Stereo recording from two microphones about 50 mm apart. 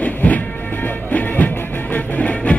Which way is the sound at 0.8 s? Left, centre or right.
Left.